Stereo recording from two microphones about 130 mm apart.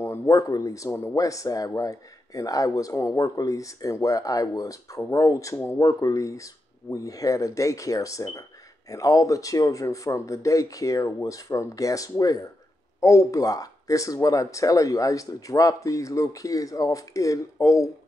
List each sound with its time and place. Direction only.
0.0 s speech: 20° left (ahead or behind)